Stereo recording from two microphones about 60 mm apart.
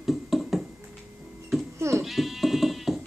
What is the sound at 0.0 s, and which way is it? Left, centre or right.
Music, centre.